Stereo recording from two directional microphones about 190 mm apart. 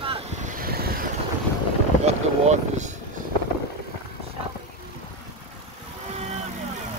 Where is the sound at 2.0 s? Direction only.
40° right (ahead or behind).